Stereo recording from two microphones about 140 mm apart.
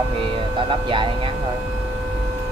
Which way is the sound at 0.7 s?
35° right (ahead or behind).